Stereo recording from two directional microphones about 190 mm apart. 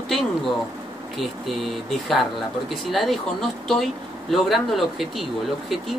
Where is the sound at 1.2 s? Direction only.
Centre (ahead or behind).